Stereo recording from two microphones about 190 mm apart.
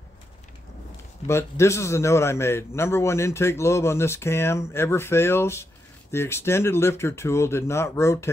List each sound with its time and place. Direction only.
1.2 s a man's voice: 15° left (ahead or behind)